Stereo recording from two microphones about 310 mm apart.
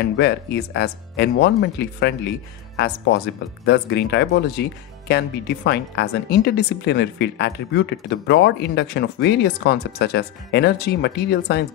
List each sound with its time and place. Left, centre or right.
0.0 s speech: left
3.6 s speech: left